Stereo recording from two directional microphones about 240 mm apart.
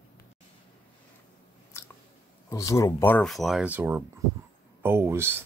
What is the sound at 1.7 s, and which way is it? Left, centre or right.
Biting, centre.